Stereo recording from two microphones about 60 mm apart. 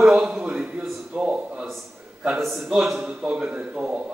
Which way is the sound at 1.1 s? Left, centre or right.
Centre.